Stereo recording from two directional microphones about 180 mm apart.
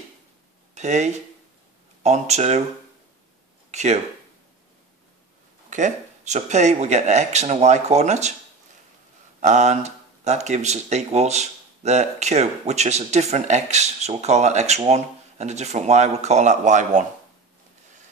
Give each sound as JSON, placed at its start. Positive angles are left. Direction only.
{"t": 0.7, "sound": "speech", "side_deg": -40}
{"t": 3.7, "sound": "speech", "side_deg": -40}
{"t": 5.7, "sound": "speech", "side_deg": -45}
{"t": 9.4, "sound": "speech", "side_deg": -40}